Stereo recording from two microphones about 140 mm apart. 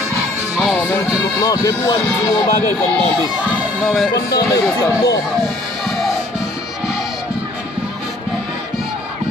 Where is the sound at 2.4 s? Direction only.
50° left (ahead or behind).